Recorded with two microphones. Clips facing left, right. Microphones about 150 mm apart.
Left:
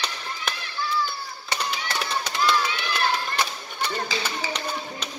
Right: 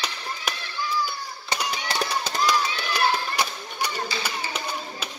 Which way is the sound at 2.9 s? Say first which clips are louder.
Right 2 dB; 10° right (ahead or behind).